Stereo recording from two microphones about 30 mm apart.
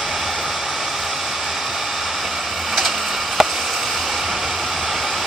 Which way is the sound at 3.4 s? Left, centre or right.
Centre.